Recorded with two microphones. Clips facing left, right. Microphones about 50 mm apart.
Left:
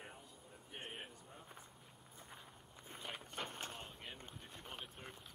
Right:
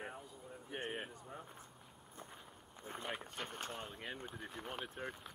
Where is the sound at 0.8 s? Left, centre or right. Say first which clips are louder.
Right 6 dB; centre.